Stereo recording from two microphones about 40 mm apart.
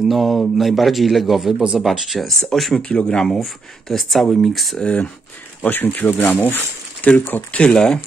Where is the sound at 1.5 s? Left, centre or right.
Centre.